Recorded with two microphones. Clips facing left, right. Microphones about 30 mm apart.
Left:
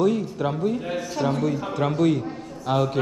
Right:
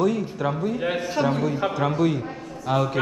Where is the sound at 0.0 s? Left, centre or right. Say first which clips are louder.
Left 1 dB; centre.